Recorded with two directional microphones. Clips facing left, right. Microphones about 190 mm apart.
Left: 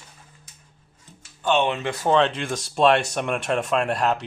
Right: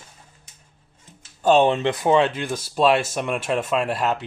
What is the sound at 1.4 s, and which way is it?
Speech, 35° right (ahead or behind).